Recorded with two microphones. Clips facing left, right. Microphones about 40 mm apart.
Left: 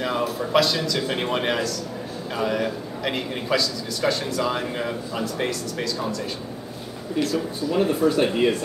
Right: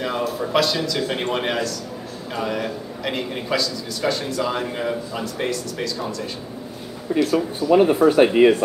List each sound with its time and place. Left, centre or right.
0.0 s a man's voice: centre
7.2 s speech: right